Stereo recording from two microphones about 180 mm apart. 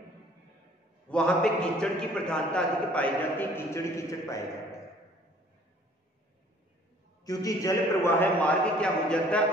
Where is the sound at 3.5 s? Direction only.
15° left (ahead or behind).